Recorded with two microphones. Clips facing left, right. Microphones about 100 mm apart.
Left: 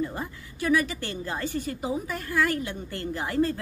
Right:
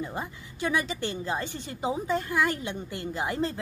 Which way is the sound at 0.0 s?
20° right (ahead or behind).